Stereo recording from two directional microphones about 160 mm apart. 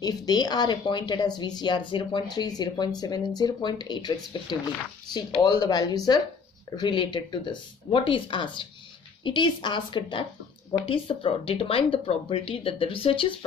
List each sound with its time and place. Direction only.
0.0 s speech: 25° left (ahead or behind)